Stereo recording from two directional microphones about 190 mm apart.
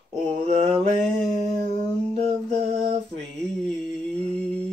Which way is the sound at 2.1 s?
30° right (ahead or behind).